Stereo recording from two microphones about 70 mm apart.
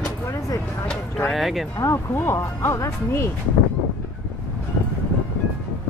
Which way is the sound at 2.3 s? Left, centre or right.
Left.